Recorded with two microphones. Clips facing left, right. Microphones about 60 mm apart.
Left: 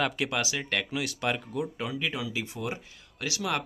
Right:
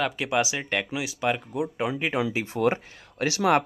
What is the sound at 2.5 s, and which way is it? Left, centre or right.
Speech, right.